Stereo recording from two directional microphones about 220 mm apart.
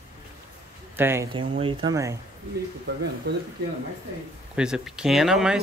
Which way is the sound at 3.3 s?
50° right (ahead or behind).